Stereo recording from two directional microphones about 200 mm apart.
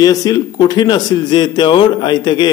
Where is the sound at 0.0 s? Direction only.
20° left (ahead or behind).